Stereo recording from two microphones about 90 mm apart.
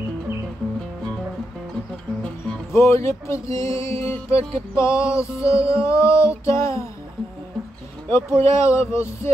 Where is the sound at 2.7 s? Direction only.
30° left (ahead or behind).